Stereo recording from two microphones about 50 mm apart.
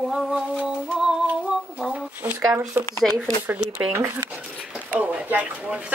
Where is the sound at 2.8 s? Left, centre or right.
Right.